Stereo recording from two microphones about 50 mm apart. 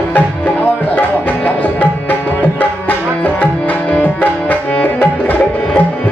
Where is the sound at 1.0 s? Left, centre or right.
Left.